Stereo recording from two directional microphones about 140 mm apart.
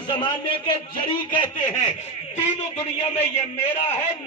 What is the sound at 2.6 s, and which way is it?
A man's voice, 50° left (ahead or behind).